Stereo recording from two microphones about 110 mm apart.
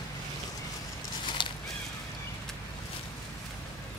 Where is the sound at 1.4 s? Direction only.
45° left (ahead or behind).